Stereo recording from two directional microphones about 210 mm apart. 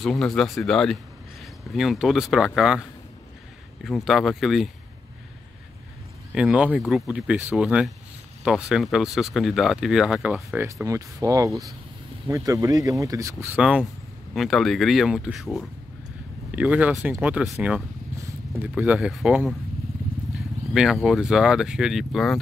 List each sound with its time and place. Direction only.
0.0 s speech: centre (ahead or behind)
6.3 s speech: 5° right (ahead or behind)
16.5 s speech: 5° right (ahead or behind)